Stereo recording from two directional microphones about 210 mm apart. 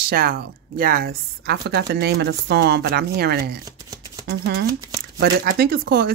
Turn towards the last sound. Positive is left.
turn(degrees=-50)  # may be behind; listen again after turning